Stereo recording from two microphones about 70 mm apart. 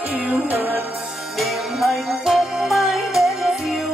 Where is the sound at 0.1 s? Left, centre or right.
Right.